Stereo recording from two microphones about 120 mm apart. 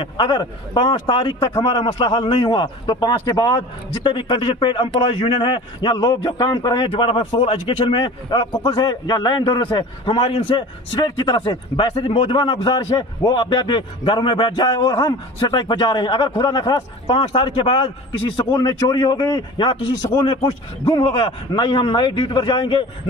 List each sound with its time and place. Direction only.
0.0 s a man's voice: 40° left (ahead or behind)
6.9 s a man's voice: 45° left (ahead or behind)